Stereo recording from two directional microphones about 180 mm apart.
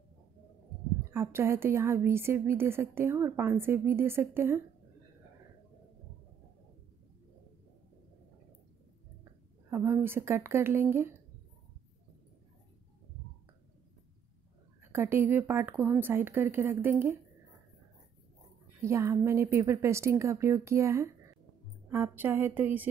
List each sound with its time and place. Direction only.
1.1 s a woman's voice: 15° right (ahead or behind)
9.7 s a woman's voice: 15° right (ahead or behind)
14.9 s a woman's voice: 10° right (ahead or behind)
18.8 s a woman's voice: 15° right (ahead or behind)